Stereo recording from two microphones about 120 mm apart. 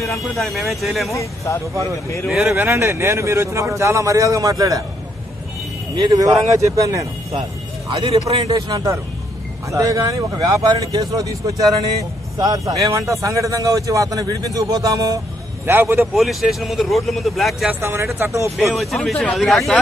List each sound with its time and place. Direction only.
0.0 s speech: centre (ahead or behind)
1.1 s speech: 25° left (ahead or behind)
2.4 s a man's voice: 20° right (ahead or behind)
5.9 s a man's voice: 30° right (ahead or behind)
8.5 s a man's voice: 30° right (ahead or behind)
15.6 s a man's voice: 20° right (ahead or behind)
16.2 s speech: centre (ahead or behind)
17.6 s a man's voice: 20° right (ahead or behind)
18.7 s speech: centre (ahead or behind)